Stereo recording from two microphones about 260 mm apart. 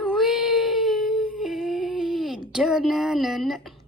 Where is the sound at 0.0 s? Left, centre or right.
Centre.